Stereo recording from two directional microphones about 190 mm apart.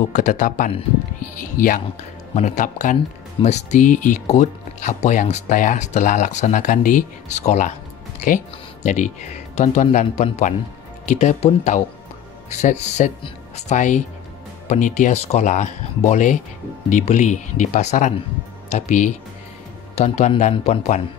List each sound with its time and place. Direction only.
0.1 s speech: 40° left (ahead or behind)
8.8 s speech: 40° left (ahead or behind)